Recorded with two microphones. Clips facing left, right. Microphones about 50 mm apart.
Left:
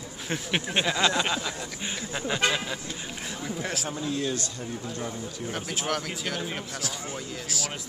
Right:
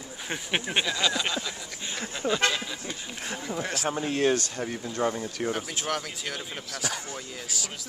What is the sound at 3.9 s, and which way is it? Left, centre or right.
Speech, right.